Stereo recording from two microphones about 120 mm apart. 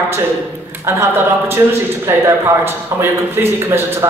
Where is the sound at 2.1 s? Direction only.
20° right (ahead or behind).